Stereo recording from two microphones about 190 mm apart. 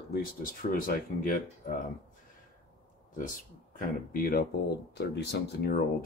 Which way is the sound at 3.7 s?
45° left (ahead or behind).